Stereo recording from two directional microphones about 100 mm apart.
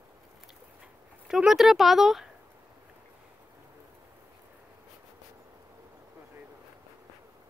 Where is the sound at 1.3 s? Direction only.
5° right (ahead or behind).